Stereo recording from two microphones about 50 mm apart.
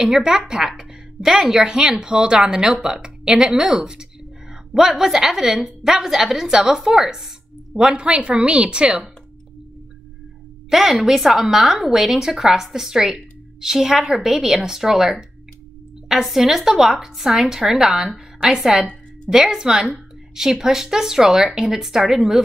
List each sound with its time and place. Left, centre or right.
0.0 s a woman's voice: centre
10.7 s a woman's voice: centre